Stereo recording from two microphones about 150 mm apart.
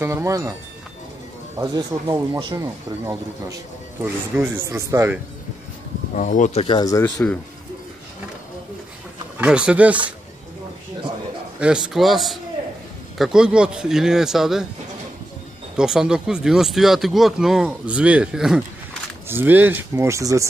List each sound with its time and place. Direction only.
0.0 s speech: 20° right (ahead or behind)
1.6 s speech: 20° right (ahead or behind)
6.1 s speech: 55° left (ahead or behind)
6.6 s speech: 30° left (ahead or behind)
9.4 s speech: 5° right (ahead or behind)
11.6 s speech: 5° right (ahead or behind)
15.7 s speech: 5° right (ahead or behind); by 20.4 s 20° right (ahead or behind)